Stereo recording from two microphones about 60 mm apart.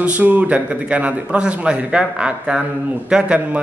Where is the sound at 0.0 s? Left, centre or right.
Right.